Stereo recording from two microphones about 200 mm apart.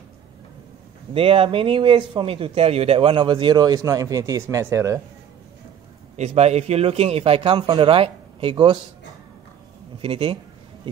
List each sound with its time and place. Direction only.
1.1 s speech: 25° right (ahead or behind)
6.1 s speech: 35° right (ahead or behind)
10.0 s speech: 25° right (ahead or behind)